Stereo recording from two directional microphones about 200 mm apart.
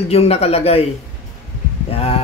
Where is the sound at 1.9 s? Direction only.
30° left (ahead or behind).